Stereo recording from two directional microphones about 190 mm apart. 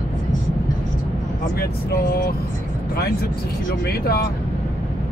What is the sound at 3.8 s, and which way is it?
Speech, 55° left (ahead or behind).